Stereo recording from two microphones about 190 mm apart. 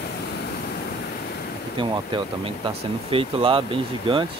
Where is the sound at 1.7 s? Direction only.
25° right (ahead or behind).